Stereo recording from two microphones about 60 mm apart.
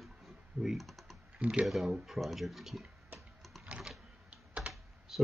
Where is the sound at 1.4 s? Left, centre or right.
Centre.